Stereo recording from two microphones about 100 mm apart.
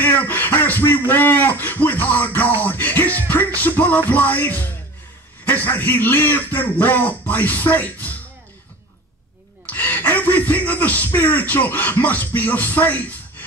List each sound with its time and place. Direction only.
0.0 s a man's voice: 20° left (ahead or behind)
9.7 s a sound: 20° left (ahead or behind)
11.1 s a man's voice: 20° left (ahead or behind)